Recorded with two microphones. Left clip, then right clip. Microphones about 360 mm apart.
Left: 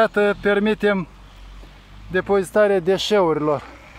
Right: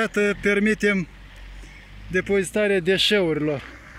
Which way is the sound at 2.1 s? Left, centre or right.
Left.